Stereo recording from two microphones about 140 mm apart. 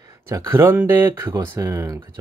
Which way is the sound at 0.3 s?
20° right (ahead or behind).